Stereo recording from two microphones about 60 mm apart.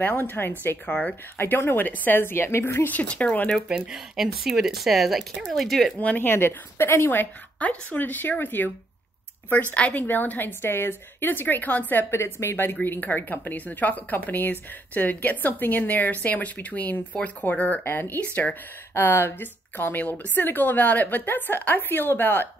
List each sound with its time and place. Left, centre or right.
0.0 s speech: left
3.6 s speech: centre
3.9 s speech: centre
5.9 s speech: left
6.3 s speech: left
7.5 s speech: left
9.8 s speech: left
10.0 s speech: left
11.9 s speech: left